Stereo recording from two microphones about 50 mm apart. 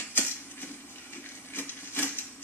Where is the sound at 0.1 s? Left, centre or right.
Left.